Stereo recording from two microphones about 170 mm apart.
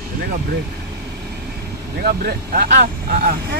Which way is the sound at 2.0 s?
65° right (ahead or behind).